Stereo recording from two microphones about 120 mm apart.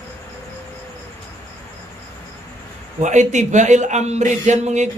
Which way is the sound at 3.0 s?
80° right.